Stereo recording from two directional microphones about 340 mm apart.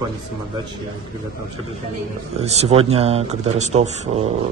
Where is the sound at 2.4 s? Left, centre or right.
Centre.